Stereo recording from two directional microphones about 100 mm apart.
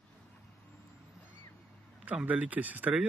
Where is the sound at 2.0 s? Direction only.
15° right (ahead or behind).